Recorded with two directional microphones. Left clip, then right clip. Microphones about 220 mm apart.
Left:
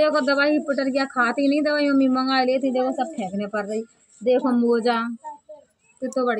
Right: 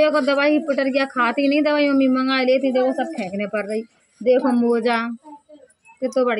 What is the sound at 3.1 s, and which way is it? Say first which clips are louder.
Speech: right 3 dB; 5° left (ahead or behind).